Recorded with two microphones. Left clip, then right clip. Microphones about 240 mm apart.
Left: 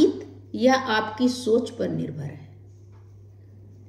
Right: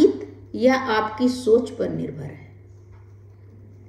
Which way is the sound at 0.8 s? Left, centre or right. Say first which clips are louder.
Right 2 dB; left.